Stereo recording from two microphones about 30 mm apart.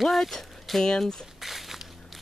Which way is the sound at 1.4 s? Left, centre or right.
Centre.